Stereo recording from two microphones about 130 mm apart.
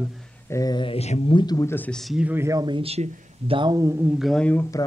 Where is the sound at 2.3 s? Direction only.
20° right (ahead or behind).